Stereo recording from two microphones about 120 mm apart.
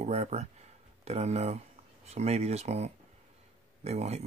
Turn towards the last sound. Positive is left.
turn(degrees=-65)  # may be behind; listen again after turning